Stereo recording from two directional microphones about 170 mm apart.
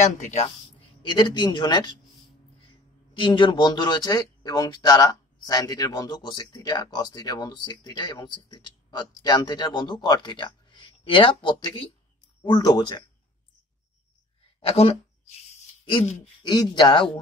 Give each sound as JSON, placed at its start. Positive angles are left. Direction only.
{"t": 0.0, "sound": "a woman's voice", "side_deg": 40}
{"t": 1.0, "sound": "speech", "side_deg": 25}
{"t": 14.7, "sound": "speech", "side_deg": 35}